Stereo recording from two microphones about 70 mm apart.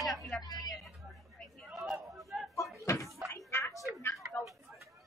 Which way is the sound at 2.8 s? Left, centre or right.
Left.